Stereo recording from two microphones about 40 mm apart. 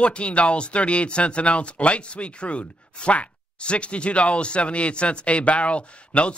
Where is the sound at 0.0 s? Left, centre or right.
Left.